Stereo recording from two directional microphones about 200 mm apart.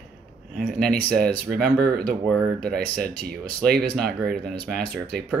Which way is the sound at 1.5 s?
50° right (ahead or behind).